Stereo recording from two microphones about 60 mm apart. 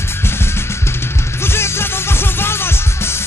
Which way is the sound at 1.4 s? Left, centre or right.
Left.